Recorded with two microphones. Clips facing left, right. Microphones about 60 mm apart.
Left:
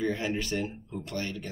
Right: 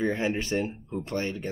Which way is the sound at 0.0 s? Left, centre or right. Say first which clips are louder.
Right 3 dB; right.